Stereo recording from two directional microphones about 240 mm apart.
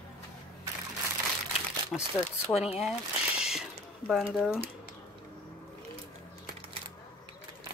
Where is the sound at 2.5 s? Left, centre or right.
Left.